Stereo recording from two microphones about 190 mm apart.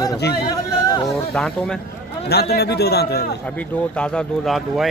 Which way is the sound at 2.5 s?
60° left (ahead or behind).